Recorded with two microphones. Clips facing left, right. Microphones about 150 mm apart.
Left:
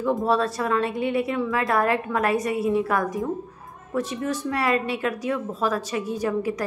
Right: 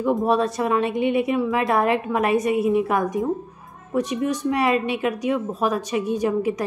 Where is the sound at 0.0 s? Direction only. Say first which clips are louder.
Right 2 dB; 20° right (ahead or behind).